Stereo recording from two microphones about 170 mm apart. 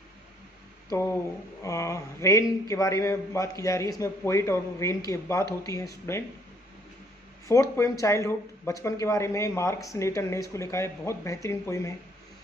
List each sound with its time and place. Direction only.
0.8 s speech: 15° left (ahead or behind)
7.7 s speech: 20° left (ahead or behind)